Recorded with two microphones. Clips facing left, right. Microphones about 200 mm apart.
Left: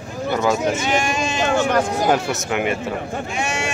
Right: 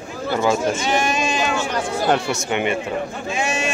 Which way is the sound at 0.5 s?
20° left (ahead or behind).